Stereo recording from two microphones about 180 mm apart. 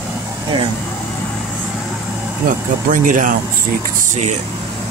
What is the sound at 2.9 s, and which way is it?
Speech, 45° right (ahead or behind).